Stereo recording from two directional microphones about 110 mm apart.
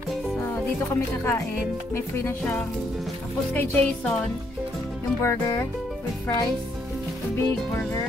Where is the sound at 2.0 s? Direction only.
25° left (ahead or behind).